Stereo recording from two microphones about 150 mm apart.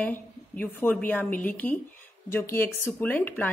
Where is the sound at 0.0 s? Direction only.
10° left (ahead or behind).